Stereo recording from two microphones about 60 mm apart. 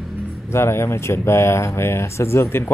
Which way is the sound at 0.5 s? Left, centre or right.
Left.